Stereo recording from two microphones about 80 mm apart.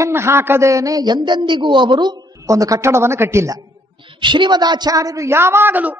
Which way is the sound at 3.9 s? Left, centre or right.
Right.